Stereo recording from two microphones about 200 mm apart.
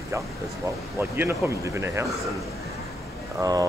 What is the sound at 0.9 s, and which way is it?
Speech, 10° right (ahead or behind).